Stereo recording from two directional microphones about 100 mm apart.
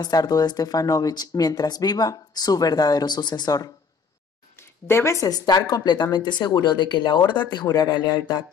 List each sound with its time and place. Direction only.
0.0 s speech: 40° left (ahead or behind)
4.6 s a woman's voice: 25° left (ahead or behind); by 8.5 s 45° left (ahead or behind)